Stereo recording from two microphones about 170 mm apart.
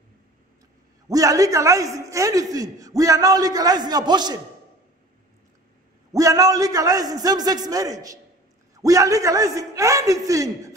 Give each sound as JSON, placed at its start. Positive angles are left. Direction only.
{"t": 1.0, "sound": "a man's voice", "side_deg": -20}
{"t": 6.1, "sound": "a man's voice", "side_deg": -20}